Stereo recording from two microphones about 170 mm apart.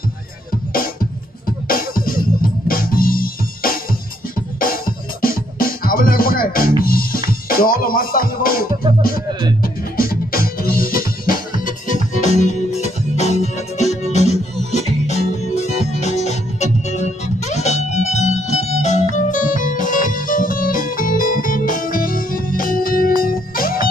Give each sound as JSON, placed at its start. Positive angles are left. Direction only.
{"t": 1.7, "sound": "music", "side_deg": 55}